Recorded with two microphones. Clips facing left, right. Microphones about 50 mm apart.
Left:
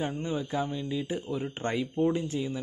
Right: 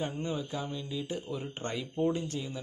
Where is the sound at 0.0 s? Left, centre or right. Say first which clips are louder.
Left 3 dB; centre.